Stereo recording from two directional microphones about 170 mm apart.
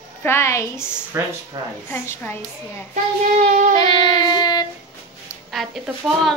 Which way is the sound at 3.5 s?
45° right (ahead or behind).